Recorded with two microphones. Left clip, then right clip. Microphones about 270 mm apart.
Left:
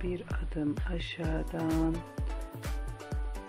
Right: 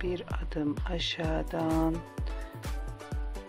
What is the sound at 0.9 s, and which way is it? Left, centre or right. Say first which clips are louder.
Music: right 5 dB; right.